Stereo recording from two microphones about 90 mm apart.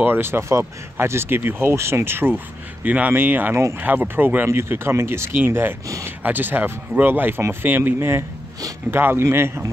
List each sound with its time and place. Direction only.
0.0 s speech: 25° right (ahead or behind)